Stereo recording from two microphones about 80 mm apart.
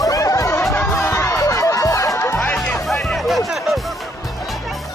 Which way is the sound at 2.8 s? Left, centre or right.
Centre.